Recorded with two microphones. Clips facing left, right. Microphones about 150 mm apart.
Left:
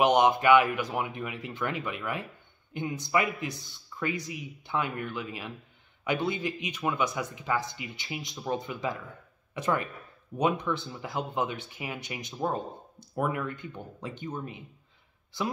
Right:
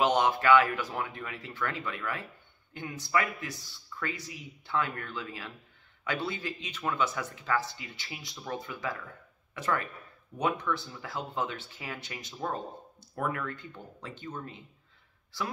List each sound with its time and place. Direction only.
0.0 s speech: 15° left (ahead or behind)